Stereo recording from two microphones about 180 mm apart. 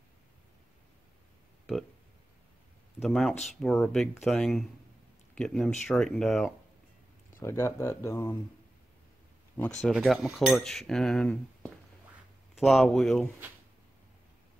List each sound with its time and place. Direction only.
3.0 s speech: centre (ahead or behind)
7.3 s speech: 15° left (ahead or behind)
9.8 s speech: centre (ahead or behind)